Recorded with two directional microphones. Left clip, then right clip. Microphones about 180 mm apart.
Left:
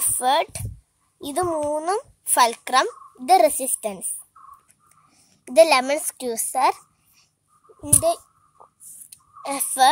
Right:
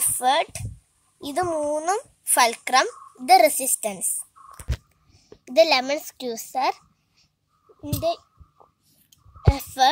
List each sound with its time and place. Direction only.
0.0 s a child's voice: 15° left (ahead or behind)
5.1 s a woman's voice: 20° left (ahead or behind)
7.8 s babbling: 15° left (ahead or behind)
9.4 s speech: 15° left (ahead or behind)